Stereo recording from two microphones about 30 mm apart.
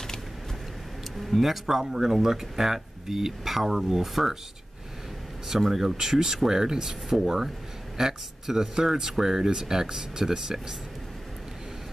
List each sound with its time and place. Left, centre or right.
1.1 s speech: centre
5.6 s speech: centre